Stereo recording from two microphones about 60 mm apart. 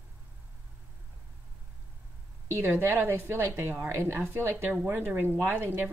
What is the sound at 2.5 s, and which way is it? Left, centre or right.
A woman's voice, right.